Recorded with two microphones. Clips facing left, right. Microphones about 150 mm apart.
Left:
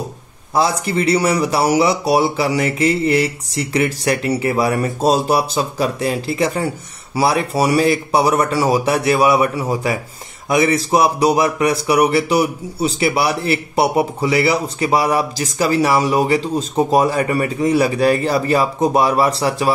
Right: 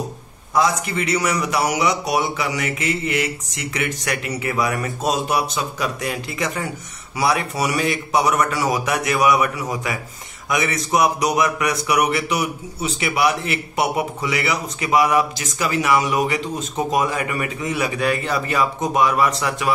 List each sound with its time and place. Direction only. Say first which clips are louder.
0.6 s speech: left 3 dB; 30° left (ahead or behind)